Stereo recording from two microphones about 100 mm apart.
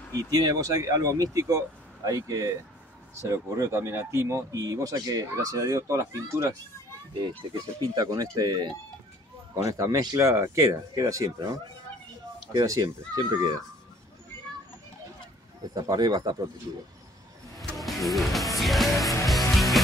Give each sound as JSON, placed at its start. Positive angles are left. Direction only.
{"t": 0.2, "sound": "speech", "side_deg": -40}
{"t": 7.9, "sound": "speech", "side_deg": -40}
{"t": 9.6, "sound": "speech", "side_deg": -35}
{"t": 12.5, "sound": "speech", "side_deg": -40}
{"t": 15.7, "sound": "speech", "side_deg": -40}
{"t": 17.6, "sound": "music", "side_deg": 0}